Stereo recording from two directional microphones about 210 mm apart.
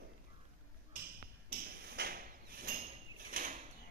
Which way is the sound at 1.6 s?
50° right (ahead or behind).